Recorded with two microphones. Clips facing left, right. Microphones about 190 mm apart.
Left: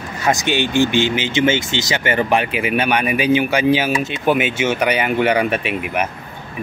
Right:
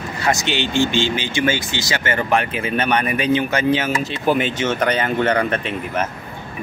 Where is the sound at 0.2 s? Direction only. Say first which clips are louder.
Left 3 dB; 20° left (ahead or behind).